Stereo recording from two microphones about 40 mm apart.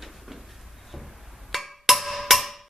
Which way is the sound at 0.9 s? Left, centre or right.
Centre.